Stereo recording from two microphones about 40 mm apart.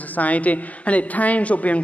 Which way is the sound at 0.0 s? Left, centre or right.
Left.